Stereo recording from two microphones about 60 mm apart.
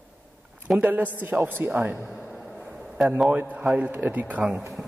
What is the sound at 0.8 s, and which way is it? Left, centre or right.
A man's voice, right.